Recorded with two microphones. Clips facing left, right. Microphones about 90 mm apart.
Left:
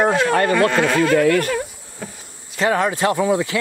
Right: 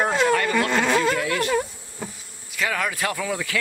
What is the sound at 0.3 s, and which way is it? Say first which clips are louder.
Speech: left 5 dB; 50° left (ahead or behind).